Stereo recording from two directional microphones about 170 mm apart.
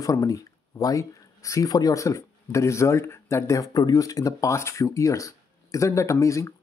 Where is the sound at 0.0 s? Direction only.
20° left (ahead or behind).